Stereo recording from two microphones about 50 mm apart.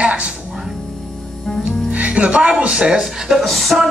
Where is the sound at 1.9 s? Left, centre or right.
Right.